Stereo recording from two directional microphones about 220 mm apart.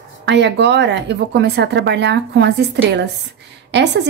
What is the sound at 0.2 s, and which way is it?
Speech, 50° right (ahead or behind).